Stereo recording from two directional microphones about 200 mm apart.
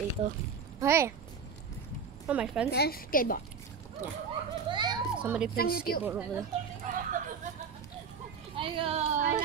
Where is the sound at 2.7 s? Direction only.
50° left (ahead or behind).